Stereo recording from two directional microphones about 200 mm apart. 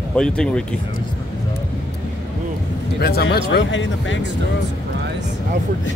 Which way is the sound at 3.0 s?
50° left (ahead or behind).